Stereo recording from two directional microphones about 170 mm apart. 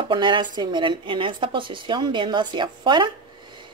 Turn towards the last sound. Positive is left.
turn(degrees=-25)  # may be behind; listen again after turning